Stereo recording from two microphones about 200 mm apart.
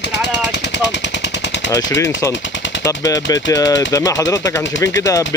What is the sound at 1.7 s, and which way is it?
Speech, 15° left (ahead or behind).